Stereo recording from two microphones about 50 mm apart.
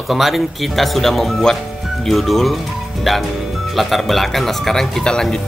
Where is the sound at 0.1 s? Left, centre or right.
Centre.